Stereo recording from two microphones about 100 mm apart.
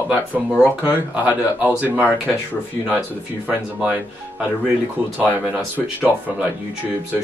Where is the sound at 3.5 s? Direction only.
15° right (ahead or behind).